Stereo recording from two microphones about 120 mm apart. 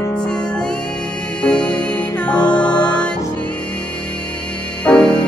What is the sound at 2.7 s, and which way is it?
Music, 35° left (ahead or behind).